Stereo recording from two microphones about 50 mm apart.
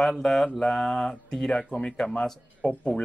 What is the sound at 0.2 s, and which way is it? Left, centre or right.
A man's voice, centre.